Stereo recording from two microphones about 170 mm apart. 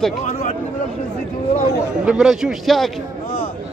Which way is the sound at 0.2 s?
40° left (ahead or behind).